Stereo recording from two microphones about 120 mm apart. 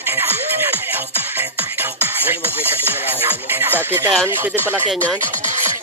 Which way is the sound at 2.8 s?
15° right (ahead or behind).